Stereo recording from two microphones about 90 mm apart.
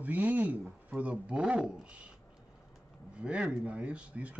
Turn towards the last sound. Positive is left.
turn(degrees=-15)  # may be behind; listen again after turning